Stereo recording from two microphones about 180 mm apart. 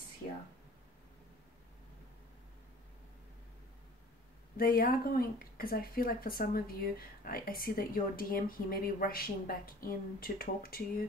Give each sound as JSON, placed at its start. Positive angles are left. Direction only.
{"t": 4.6, "sound": "speech", "side_deg": 55}